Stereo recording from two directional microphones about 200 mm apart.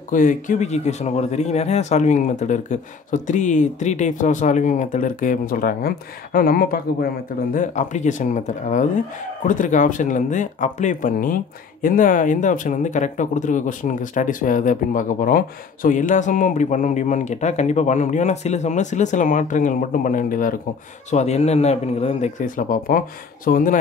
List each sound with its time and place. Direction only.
0.1 s speech: 40° left (ahead or behind)